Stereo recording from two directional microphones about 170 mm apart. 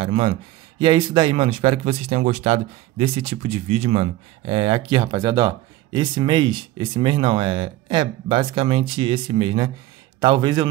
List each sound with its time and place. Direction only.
0.0 s speech: 35° right (ahead or behind)